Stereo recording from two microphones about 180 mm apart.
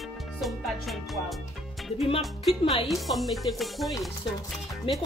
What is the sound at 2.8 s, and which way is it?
Speech, centre (ahead or behind).